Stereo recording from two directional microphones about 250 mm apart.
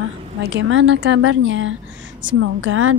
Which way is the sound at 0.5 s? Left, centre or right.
Right.